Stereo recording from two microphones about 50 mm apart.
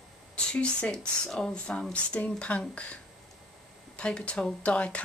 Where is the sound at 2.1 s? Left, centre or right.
Left.